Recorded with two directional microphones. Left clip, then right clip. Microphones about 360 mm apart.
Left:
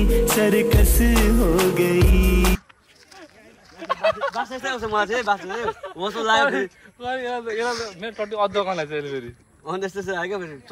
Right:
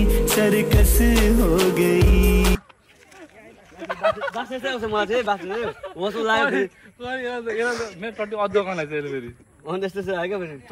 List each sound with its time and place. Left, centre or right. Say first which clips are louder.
0.0 s music: left 1 dB; centre
3.8 s a sound: left 1 dB; left
4.4 s music: even; centre
5.4 s a man's voice: even; left
5.9 s music: left 1 dB; centre
6.4 s a man's voice: even; left
9.7 s music: right 1 dB; centre